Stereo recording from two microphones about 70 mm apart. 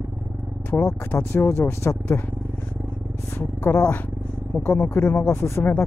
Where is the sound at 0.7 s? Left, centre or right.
Left.